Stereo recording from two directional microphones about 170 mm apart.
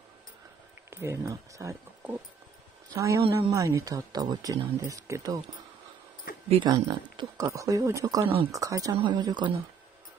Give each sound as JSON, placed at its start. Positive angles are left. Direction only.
{"t": 0.8, "sound": "speech", "side_deg": -15}
{"t": 6.5, "sound": "speech", "side_deg": -25}